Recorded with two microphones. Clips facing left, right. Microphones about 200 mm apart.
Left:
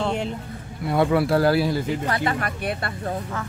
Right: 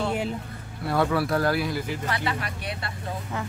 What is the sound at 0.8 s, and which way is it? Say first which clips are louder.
Speech: left 4 dB; 20° left (ahead or behind).